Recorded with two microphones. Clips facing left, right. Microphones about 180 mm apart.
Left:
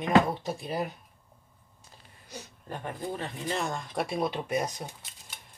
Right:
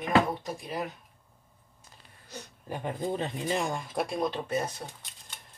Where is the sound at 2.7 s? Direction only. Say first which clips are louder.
Right 3 dB; 20° right (ahead or behind); by 4.8 s 15° left (ahead or behind).